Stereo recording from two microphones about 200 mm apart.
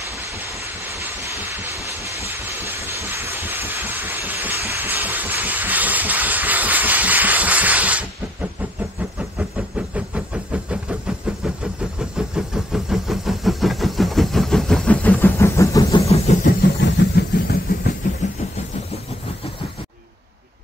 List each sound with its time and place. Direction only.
0.1 s vehicle: 15° right (ahead or behind)
9.4 s a sound: 5° right (ahead or behind); by 16.0 s 15° left (ahead or behind)
16.3 s vehicle: 35° left (ahead or behind)
16.8 s vehicle: 60° left (ahead or behind)